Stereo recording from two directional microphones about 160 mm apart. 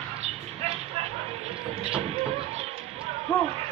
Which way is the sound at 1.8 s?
40° right (ahead or behind).